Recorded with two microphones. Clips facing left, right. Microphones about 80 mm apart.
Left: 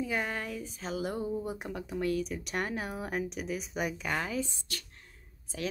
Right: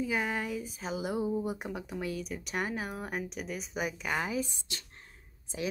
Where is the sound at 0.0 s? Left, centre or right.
Centre.